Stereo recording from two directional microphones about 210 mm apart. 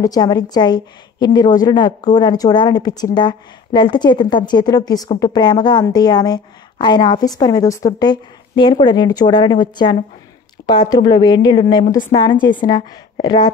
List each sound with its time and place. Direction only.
0.0 s a woman's voice: 20° left (ahead or behind)